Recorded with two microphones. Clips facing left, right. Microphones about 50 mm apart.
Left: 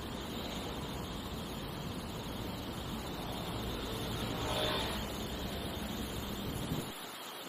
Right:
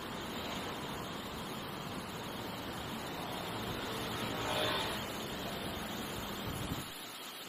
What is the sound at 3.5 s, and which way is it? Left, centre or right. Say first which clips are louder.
Vehicle: even; right.